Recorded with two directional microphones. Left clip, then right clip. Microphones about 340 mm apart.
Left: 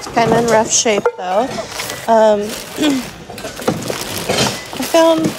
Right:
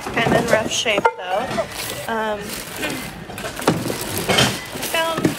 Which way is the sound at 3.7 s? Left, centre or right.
Right.